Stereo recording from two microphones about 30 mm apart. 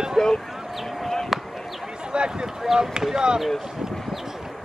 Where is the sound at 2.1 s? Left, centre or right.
Right.